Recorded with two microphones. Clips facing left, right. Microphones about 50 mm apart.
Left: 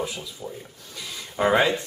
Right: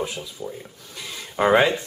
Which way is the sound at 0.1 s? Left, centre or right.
Centre.